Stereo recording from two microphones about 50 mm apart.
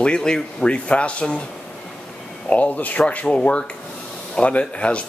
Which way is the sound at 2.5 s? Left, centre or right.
Left.